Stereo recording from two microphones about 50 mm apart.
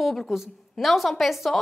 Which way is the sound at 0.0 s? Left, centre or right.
Centre.